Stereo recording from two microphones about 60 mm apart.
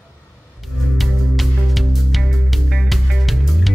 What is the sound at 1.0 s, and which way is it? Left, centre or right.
Music, centre.